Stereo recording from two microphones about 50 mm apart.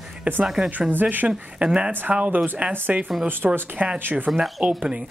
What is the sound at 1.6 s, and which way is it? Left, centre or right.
Speech, right.